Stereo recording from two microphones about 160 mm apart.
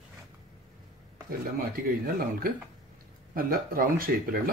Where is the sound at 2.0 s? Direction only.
65° right (ahead or behind).